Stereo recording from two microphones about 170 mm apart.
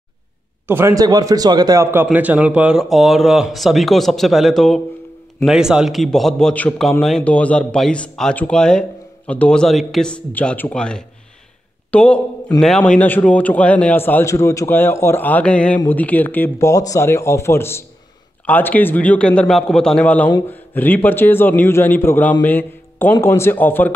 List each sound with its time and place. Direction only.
0.7 s a man's voice: 15° right (ahead or behind); by 23.9 s 10° left (ahead or behind)